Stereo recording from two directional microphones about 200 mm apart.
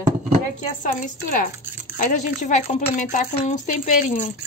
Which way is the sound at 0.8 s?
45° left (ahead or behind).